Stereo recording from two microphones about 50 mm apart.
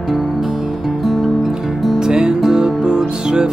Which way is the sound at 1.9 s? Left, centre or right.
Centre.